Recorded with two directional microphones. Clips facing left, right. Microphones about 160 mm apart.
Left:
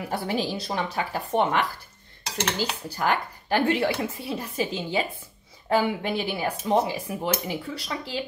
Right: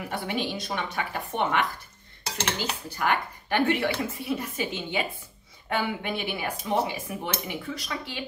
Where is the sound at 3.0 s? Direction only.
35° left (ahead or behind).